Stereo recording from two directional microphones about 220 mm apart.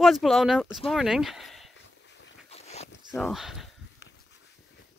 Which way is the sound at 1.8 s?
55° left (ahead or behind).